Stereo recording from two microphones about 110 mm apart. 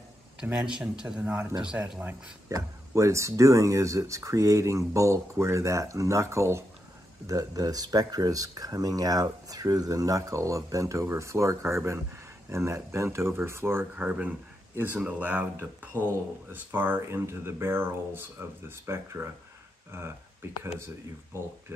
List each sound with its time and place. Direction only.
0.4 s speech: 10° right (ahead or behind)
2.5 s speech: 25° right (ahead or behind)